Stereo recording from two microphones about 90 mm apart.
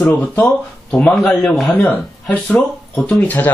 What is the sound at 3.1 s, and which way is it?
Speech, 20° left (ahead or behind).